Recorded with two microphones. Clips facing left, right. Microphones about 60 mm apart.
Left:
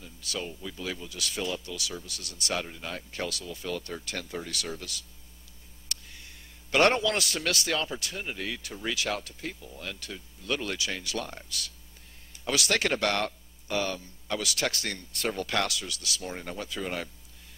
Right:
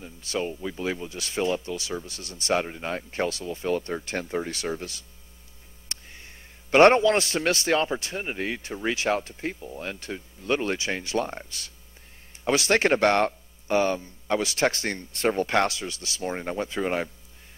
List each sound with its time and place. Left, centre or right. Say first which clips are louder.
0.0 s a man's voice: right 7 dB; right